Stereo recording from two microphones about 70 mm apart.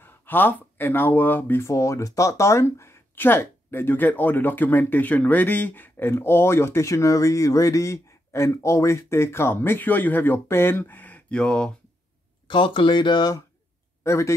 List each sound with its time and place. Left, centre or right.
0.0 s speech: left
1.7 s speech: left; by 11.7 s centre
12.5 s speech: left
14.0 s a man's voice: left